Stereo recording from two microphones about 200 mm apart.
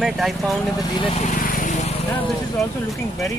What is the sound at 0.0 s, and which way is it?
Speech, centre (ahead or behind).